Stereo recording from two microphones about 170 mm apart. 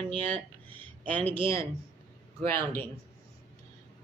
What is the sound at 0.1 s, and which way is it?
Speech, 10° left (ahead or behind).